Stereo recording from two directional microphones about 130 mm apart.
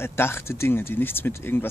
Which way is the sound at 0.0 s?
20° left (ahead or behind).